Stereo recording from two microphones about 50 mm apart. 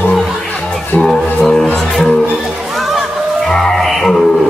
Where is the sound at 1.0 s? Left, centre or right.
Centre.